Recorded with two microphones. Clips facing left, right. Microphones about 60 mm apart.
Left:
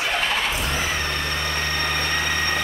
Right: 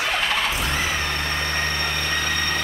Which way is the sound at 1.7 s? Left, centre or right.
Centre.